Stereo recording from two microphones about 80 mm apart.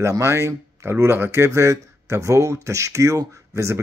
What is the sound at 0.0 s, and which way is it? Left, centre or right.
Speech, right.